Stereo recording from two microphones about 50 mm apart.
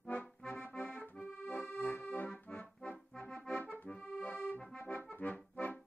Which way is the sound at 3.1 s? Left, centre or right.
Centre.